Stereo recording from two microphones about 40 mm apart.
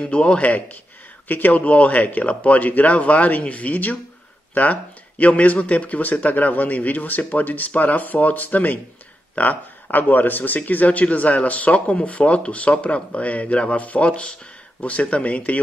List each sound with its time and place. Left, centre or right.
0.1 s speech: left
1.3 s speech: left
1.6 s speech: left